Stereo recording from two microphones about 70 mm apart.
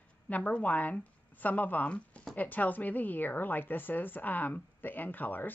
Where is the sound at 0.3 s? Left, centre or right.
Left.